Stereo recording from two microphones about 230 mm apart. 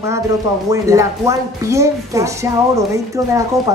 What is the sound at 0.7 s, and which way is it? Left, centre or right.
A woman's voice, centre.